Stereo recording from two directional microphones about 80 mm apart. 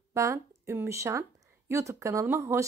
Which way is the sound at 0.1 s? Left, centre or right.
Right.